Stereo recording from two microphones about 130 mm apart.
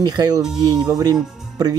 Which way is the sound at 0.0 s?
30° right (ahead or behind).